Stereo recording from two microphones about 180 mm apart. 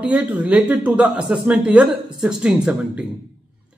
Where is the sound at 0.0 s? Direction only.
10° right (ahead or behind).